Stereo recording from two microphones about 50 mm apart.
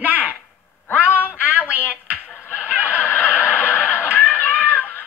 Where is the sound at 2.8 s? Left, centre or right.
Left.